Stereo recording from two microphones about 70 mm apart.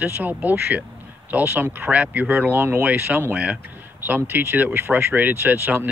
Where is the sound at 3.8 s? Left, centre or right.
Right.